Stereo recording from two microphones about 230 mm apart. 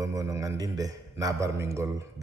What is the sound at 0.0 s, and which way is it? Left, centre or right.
A man's voice, centre.